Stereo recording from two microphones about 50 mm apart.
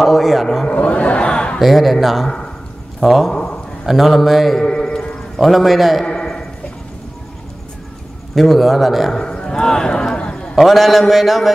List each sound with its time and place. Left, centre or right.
0.0 s a man's voice: centre
0.7 s a sound: left
1.6 s a man's voice: centre
2.2 s speech: centre
3.0 s a man's voice: centre
3.3 s a man's voice: centre
3.8 s a man's voice: centre
4.6 s a man's voice: centre
5.4 s a man's voice: centre
6.0 s a sound: centre
8.4 s a man's voice: centre
9.1 s speech: centre
10.5 s a man's voice: centre